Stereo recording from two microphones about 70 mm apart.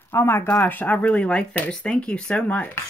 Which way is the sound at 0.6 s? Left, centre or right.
Left.